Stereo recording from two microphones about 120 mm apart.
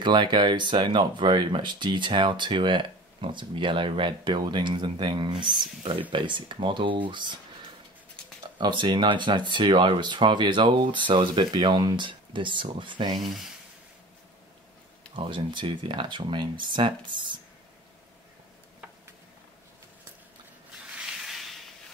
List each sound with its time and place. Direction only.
0.0 s speech: 40° right (ahead or behind)
8.5 s speech: 40° right (ahead or behind)
15.1 s speech: 45° right (ahead or behind)
20.9 s a sound: 5° right (ahead or behind)